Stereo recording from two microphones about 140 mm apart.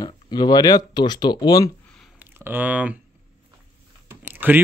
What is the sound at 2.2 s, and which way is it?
Speech, 15° right (ahead or behind).